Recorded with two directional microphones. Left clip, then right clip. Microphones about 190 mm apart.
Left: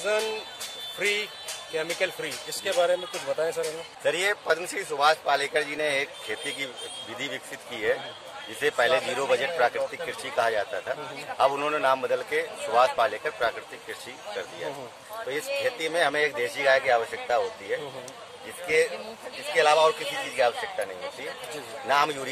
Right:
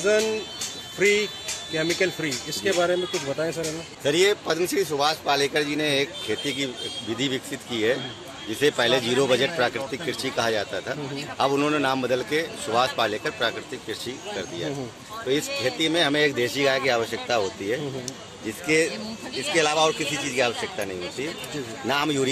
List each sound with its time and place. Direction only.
0.9 s a man's voice: centre (ahead or behind)
15.2 s speech: 5° right (ahead or behind); by 17.7 s 20° right (ahead or behind)
19.5 s speech: 40° right (ahead or behind)
21.8 s speech: 15° right (ahead or behind)